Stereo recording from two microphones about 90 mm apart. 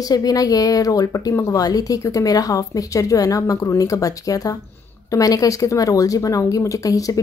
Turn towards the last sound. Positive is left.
turn(degrees=40)  # may be behind; listen again after turning